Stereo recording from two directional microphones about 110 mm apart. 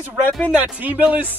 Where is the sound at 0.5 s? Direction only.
10° right (ahead or behind).